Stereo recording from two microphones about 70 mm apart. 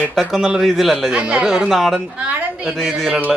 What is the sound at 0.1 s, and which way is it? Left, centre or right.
Speech, centre.